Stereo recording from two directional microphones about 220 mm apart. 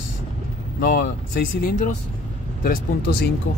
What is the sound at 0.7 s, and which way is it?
Speech, 45° left (ahead or behind).